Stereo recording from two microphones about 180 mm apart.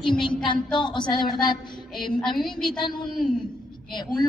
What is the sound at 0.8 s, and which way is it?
Speech, 25° left (ahead or behind).